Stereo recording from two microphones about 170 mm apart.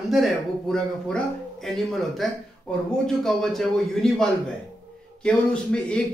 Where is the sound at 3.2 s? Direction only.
Centre (ahead or behind).